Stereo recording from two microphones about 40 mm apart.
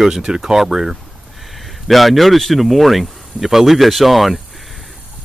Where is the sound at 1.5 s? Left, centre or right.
Centre.